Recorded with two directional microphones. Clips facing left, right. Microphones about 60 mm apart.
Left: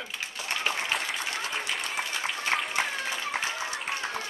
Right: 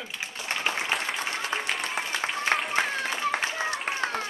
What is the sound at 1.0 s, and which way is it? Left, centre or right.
Applause, right.